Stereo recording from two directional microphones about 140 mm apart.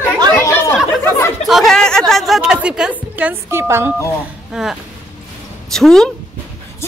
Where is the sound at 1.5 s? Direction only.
Centre (ahead or behind); by 3.9 s 20° right (ahead or behind).